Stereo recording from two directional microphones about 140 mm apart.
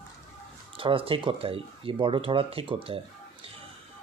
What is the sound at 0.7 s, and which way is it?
Speech, 40° right (ahead or behind).